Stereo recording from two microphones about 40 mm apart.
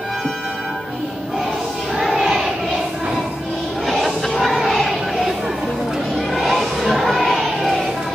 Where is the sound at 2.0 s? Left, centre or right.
Centre.